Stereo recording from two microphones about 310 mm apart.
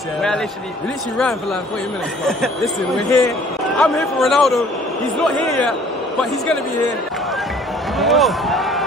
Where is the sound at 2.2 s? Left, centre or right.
Centre.